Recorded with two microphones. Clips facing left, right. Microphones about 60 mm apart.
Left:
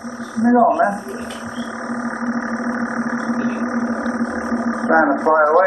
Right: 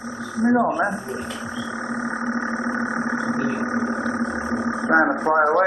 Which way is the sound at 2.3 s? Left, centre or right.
Centre.